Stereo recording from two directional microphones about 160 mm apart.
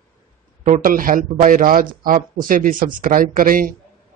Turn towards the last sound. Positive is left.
turn(degrees=-60)  # may be behind; listen again after turning